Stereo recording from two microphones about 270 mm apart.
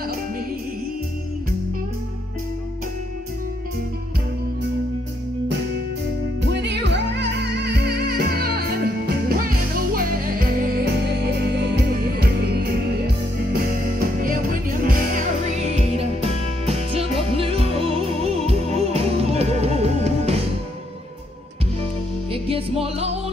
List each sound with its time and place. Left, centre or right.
6.4 s music: right
22.3 s music: right